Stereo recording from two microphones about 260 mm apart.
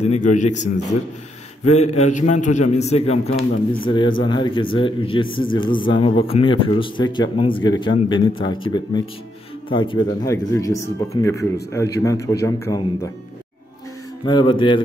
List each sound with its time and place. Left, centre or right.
0.0 s speech: left; by 13.1 s centre
14.2 s speech: centre